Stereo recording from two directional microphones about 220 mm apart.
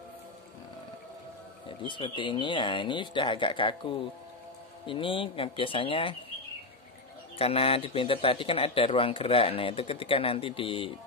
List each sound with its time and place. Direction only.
1.9 s a man's voice: 20° left (ahead or behind)
7.3 s a man's voice: 25° left (ahead or behind)